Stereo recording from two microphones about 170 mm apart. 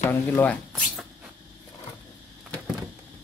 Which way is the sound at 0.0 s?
10° left (ahead or behind).